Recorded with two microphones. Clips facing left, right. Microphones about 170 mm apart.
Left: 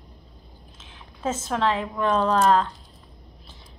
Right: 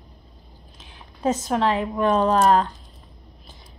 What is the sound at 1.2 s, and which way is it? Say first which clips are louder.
Speech: right 3 dB; 15° right (ahead or behind).